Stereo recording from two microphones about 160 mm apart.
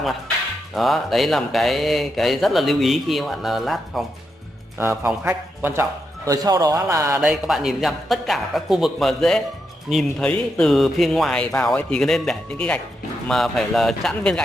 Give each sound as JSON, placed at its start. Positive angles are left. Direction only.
{"t": 0.7, "sound": "speech", "side_deg": 0}
{"t": 4.7, "sound": "a man's voice", "side_deg": -15}
{"t": 7.2, "sound": "speech", "side_deg": 0}